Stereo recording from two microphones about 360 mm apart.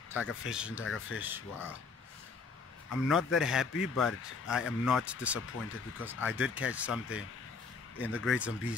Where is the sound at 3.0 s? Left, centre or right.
Centre.